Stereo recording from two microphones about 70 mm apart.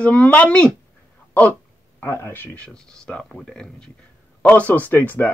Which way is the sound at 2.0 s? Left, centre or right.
Left.